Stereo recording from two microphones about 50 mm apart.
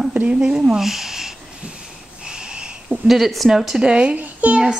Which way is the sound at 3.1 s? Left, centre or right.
Centre.